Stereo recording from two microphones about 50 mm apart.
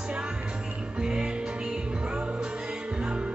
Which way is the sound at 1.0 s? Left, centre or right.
Centre.